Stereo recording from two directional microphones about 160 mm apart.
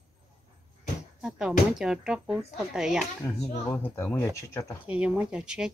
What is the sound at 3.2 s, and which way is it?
Speech, 15° left (ahead or behind).